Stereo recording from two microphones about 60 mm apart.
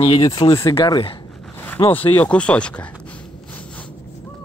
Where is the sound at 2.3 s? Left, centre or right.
Centre.